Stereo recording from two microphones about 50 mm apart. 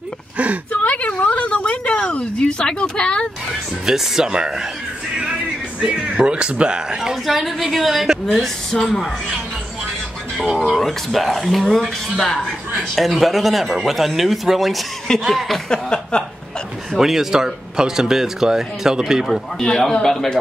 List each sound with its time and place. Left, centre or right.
0.8 s a sound: left
3.8 s speech: centre
5.8 s speech: centre
7.0 s a man's voice: centre
10.8 s a man's voice: centre
12.7 s a man's voice: centre
15.7 s a sound: centre
16.9 s speech: centre
19.6 s speech: centre